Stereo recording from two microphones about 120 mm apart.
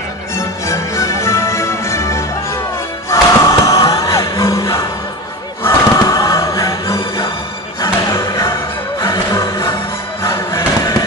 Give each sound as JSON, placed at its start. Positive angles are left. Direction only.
{"t": 0.4, "sound": "music", "side_deg": 25}
{"t": 3.1, "sound": "crowd", "side_deg": 25}
{"t": 5.6, "sound": "choir", "side_deg": 25}
{"t": 7.8, "sound": "music", "side_deg": 25}
{"t": 10.2, "sound": "a sound", "side_deg": 25}